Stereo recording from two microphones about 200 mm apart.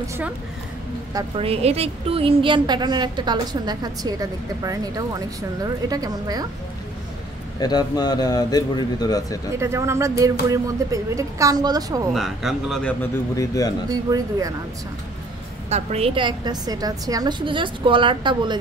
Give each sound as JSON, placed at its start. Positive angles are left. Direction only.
{"t": 1.1, "sound": "a woman's voice", "side_deg": -25}
{"t": 7.5, "sound": "speech", "side_deg": 20}
{"t": 9.6, "sound": "speech", "side_deg": -15}
{"t": 12.1, "sound": "speech", "side_deg": 0}
{"t": 13.4, "sound": "speech", "side_deg": 20}
{"t": 14.1, "sound": "speech", "side_deg": -15}
{"t": 15.7, "sound": "a woman's voice", "side_deg": -30}